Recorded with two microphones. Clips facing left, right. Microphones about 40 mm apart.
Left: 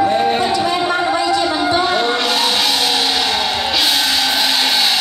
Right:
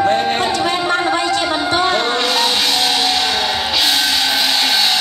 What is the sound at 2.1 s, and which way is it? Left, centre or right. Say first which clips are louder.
Music: even; centre.